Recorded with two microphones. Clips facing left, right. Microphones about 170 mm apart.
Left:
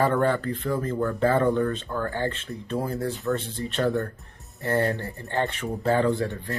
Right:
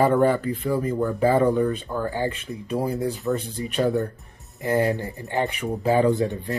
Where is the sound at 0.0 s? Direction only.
15° right (ahead or behind).